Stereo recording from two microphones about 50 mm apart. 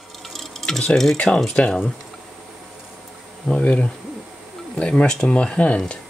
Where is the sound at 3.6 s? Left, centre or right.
Left.